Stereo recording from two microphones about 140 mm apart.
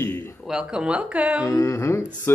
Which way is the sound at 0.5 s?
5° right (ahead or behind).